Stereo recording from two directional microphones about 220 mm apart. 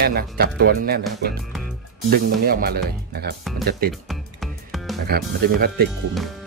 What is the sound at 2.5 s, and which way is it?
Speech, 45° right (ahead or behind).